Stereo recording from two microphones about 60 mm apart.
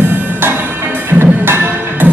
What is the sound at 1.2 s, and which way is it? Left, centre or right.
Music, right.